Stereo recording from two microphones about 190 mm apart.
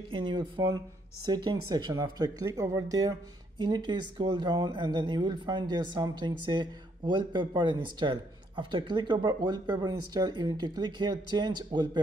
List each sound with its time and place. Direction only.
0.1 s speech: 25° right (ahead or behind)